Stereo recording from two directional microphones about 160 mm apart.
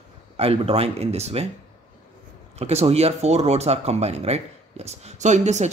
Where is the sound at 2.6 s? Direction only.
40° right (ahead or behind).